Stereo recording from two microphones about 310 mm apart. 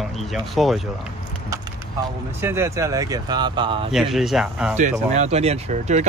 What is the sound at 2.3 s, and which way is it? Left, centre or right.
Speech, centre.